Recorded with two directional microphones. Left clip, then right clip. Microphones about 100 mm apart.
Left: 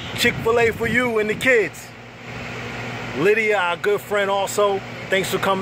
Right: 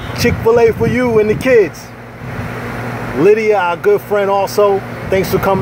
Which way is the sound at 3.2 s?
Centre (ahead or behind).